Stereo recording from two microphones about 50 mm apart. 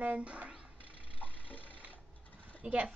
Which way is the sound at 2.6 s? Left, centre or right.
Right.